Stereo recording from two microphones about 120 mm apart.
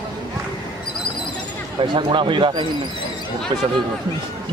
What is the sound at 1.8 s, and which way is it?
Speech, 40° right (ahead or behind).